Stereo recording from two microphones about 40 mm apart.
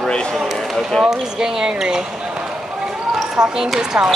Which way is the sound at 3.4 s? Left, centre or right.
Right.